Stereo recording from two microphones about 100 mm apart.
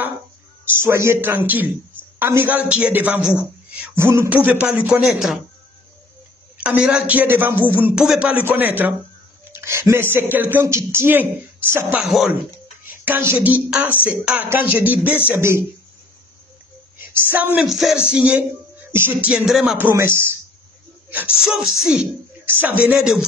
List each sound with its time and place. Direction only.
0.7 s a man's voice: 25° right (ahead or behind)
3.9 s a man's voice: 25° right (ahead or behind); by 5.4 s 5° right (ahead or behind)
6.6 s a man's voice: 10° right (ahead or behind)
12.0 s speech: 5° right (ahead or behind)
13.0 s a man's voice: 20° right (ahead or behind)
17.0 s a woman's voice: 20° right (ahead or behind)
17.6 s speech: centre (ahead or behind)
18.1 s a man's voice: 15° right (ahead or behind)
19.8 s speech: 25° right (ahead or behind)
21.5 s speech: 5° right (ahead or behind)
22.4 s a man's voice: 20° right (ahead or behind)